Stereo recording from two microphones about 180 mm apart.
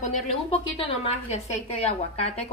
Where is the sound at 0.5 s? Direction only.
30° left (ahead or behind).